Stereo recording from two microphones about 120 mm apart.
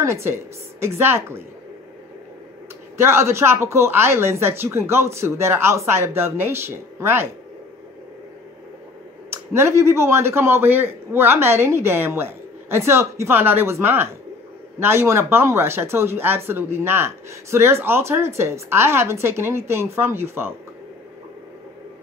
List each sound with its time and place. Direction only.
0.0 s speech: 20° right (ahead or behind)
3.0 s speech: 20° right (ahead or behind)
9.3 s speech: 20° right (ahead or behind)